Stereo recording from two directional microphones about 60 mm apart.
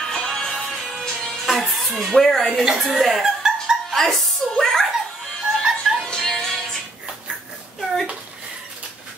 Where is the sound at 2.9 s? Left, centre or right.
Centre.